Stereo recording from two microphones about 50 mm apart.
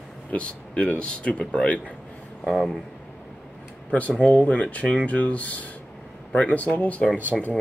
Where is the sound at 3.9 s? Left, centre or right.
Left.